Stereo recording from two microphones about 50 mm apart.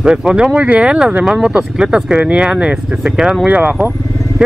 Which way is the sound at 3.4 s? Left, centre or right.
Right.